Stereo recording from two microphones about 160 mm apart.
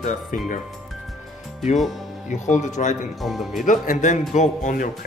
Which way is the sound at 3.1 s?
Centre (ahead or behind).